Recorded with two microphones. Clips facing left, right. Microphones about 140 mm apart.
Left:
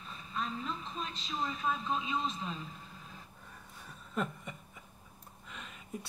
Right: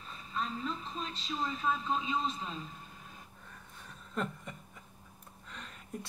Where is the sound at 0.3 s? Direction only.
35° right (ahead or behind).